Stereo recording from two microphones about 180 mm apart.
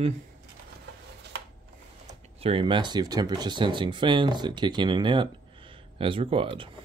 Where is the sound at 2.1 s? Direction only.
35° right (ahead or behind).